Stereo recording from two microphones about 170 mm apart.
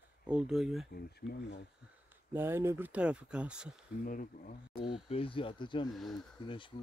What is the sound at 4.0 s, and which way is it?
Speech, 55° left (ahead or behind).